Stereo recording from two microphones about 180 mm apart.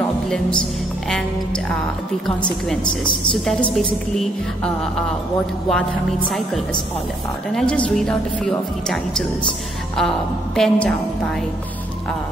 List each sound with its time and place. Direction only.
2.2 s a woman's voice: 5° left (ahead or behind)
5.7 s a woman's voice: centre (ahead or behind)